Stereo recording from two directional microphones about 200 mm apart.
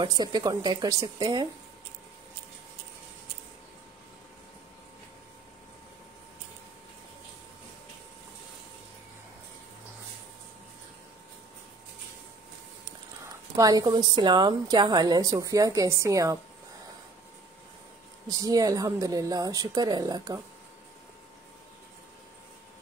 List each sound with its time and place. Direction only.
0.0 s a woman's voice: 20° right (ahead or behind)
13.6 s a woman's voice: 20° right (ahead or behind)
18.4 s a woman's voice: 15° right (ahead or behind)